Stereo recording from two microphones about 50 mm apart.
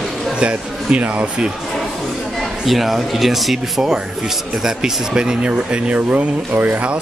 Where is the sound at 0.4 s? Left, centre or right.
Right.